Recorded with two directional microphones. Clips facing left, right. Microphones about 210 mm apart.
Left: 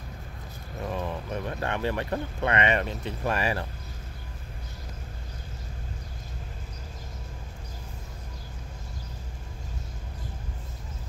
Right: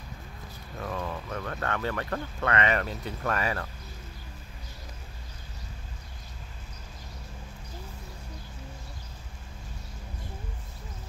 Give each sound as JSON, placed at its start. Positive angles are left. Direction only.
{"t": 0.8, "sound": "speech", "side_deg": 20}